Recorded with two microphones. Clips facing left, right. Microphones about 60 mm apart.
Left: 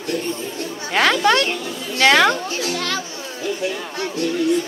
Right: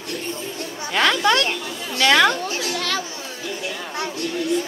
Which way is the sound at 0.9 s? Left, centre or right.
Centre.